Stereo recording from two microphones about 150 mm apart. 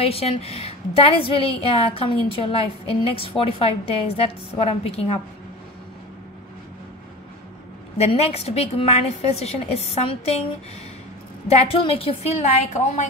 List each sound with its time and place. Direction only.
0.0 s a woman's voice: 40° left (ahead or behind)
8.0 s a woman's voice: 45° left (ahead or behind)
11.4 s a woman's voice: 40° left (ahead or behind)